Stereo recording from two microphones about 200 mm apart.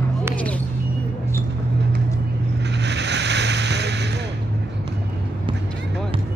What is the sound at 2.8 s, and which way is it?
Boat, 60° right (ahead or behind).